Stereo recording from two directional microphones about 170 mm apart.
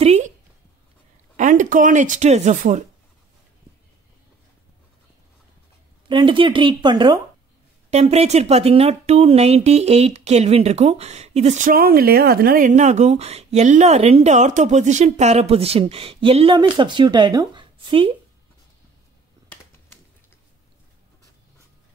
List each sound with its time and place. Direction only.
0.0 s a sound: 40° right (ahead or behind)
1.3 s speech: 50° right (ahead or behind)
6.0 s speech: 30° right (ahead or behind)
7.9 s speech: 40° right (ahead or behind)